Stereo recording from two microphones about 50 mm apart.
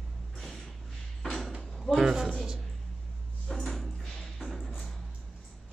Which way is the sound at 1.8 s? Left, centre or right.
Centre.